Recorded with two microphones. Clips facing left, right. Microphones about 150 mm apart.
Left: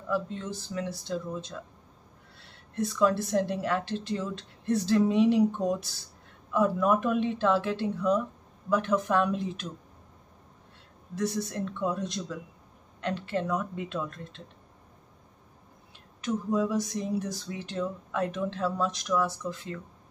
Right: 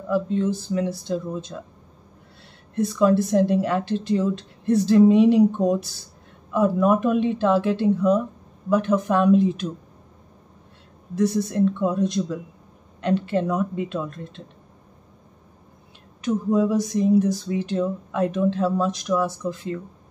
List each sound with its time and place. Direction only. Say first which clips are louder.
0.1 s speech: right 9 dB; 10° right (ahead or behind)
2.7 s speech: right 6 dB; 10° right (ahead or behind)
6.5 s speech: right 5 dB; 10° right (ahead or behind)
11.1 s speech: right 9 dB; 10° right (ahead or behind)
16.2 s speech: right 7 dB; 10° right (ahead or behind)